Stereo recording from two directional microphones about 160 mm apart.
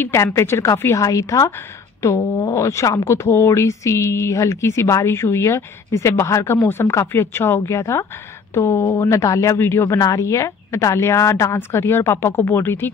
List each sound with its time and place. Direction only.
0.0 s a woman's voice: 15° left (ahead or behind)